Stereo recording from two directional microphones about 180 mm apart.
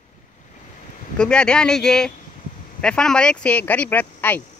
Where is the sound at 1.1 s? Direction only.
5° left (ahead or behind).